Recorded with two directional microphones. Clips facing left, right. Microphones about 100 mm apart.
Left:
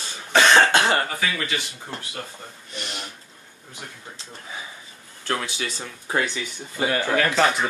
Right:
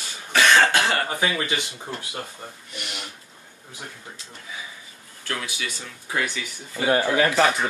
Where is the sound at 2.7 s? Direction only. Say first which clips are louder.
Left 3 dB; 30° left (ahead or behind).